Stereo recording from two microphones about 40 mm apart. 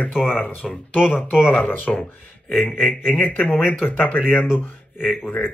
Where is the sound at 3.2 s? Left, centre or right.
Left.